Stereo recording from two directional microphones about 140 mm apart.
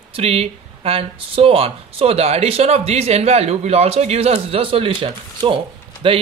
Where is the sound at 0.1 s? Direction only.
45° right (ahead or behind).